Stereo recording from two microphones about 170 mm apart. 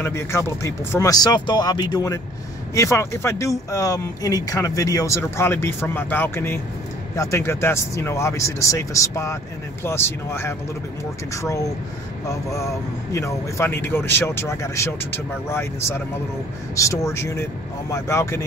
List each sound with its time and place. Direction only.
0.0 s speech: 15° left (ahead or behind)
12.3 s speech: 20° left (ahead or behind)